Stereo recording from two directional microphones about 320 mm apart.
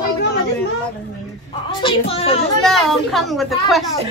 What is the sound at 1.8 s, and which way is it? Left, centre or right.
Speech, centre.